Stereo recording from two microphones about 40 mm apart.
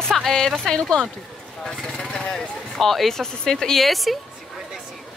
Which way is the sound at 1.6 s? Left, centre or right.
Left.